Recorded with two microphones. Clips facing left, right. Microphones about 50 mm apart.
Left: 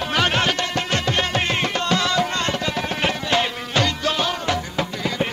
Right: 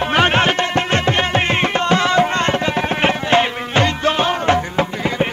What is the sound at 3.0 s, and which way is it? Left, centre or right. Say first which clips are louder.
Music: right 6 dB; right.